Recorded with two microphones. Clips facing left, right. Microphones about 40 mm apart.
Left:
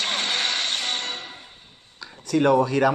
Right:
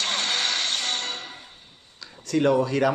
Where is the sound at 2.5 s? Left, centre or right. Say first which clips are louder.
Left 2 dB; centre.